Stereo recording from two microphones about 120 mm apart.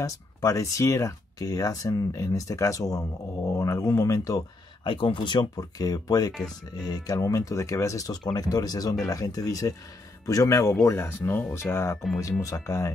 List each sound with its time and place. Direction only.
0.0 s speech: 25° left (ahead or behind)
4.8 s speech: 45° left (ahead or behind); by 12.9 s 25° left (ahead or behind)